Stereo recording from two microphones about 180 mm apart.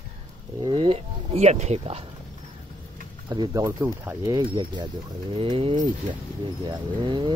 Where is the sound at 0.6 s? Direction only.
30° right (ahead or behind).